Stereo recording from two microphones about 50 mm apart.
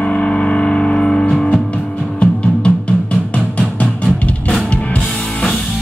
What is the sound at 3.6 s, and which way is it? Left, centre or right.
Music, left.